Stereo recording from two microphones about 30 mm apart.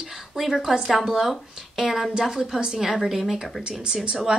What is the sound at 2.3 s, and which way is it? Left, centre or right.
A woman's voice, centre.